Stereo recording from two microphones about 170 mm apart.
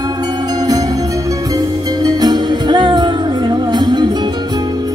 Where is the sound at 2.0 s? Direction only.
25° right (ahead or behind).